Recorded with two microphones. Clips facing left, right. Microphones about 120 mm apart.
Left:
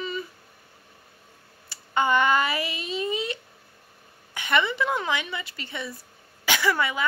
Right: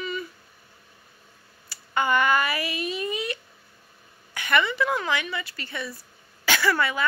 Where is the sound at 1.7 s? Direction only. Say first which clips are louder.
Left 1 dB; 25° left (ahead or behind).